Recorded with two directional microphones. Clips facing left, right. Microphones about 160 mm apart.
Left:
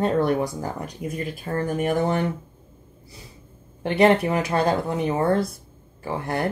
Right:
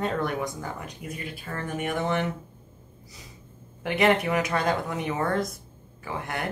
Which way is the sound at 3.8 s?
30° left (ahead or behind).